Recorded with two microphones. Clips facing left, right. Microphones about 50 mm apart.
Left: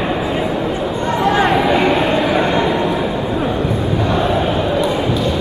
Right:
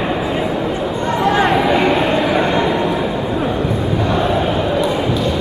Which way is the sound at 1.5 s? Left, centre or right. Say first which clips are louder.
Even; centre.